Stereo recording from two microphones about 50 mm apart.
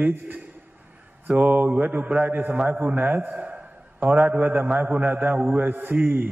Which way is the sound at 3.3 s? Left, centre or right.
Right.